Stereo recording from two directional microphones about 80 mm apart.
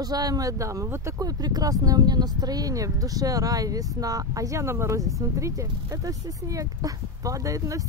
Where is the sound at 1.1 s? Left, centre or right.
Right.